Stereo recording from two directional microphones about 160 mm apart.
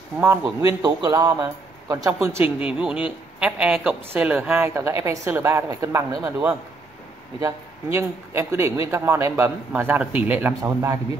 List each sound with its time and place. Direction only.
0.2 s a man's voice: 10° right (ahead or behind)
0.8 s a man's voice: 25° right (ahead or behind)
7.3 s a man's voice: 15° right (ahead or behind)